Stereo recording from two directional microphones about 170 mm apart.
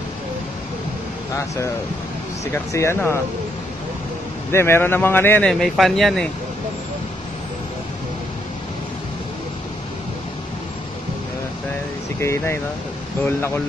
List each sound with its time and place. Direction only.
2.5 s speech: 15° left (ahead or behind)
4.5 s speech: 15° left (ahead or behind)
5.5 s speech: centre (ahead or behind)
12.2 s speech: 15° left (ahead or behind)